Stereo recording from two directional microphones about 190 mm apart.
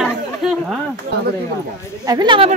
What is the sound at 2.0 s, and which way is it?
Speech, 20° right (ahead or behind).